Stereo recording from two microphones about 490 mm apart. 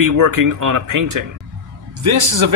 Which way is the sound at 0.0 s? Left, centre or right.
Right.